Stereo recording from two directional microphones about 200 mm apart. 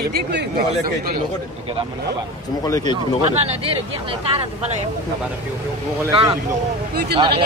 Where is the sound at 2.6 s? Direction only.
20° left (ahead or behind).